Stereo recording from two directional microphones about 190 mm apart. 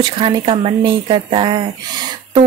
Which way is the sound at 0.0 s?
25° right (ahead or behind).